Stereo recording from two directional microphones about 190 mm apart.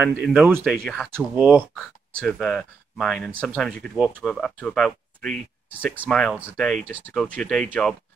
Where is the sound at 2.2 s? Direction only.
Centre (ahead or behind).